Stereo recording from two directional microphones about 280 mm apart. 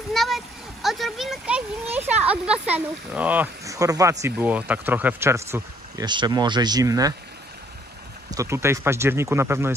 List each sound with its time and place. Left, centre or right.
0.1 s a child's voice: centre
8.3 s a child's voice: centre